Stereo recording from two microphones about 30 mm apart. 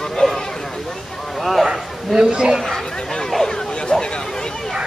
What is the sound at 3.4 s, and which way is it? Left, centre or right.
Vehicle, left.